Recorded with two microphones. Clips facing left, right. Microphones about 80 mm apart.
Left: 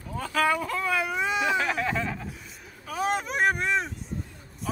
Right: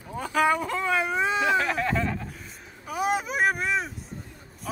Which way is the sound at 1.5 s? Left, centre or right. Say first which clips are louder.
Right 2 dB; centre.